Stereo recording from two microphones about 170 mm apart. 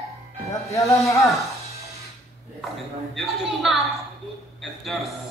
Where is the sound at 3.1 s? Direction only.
Centre (ahead or behind).